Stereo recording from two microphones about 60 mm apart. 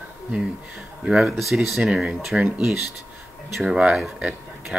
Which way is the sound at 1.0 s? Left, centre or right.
Centre.